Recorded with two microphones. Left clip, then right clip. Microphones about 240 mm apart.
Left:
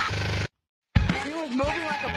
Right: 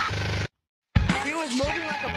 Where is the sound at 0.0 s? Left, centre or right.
Centre.